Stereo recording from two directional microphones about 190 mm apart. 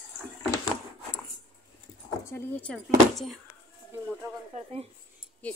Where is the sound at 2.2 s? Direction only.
10° left (ahead or behind).